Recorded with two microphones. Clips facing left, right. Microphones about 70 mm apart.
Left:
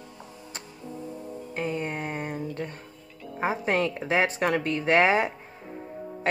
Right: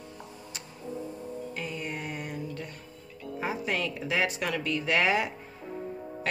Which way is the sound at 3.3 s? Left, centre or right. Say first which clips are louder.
Left 6 dB; left.